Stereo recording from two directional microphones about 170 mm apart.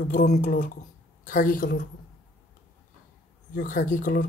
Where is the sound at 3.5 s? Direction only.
50° left (ahead or behind).